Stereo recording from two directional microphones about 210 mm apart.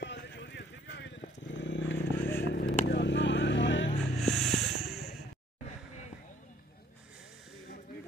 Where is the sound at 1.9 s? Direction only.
10° left (ahead or behind).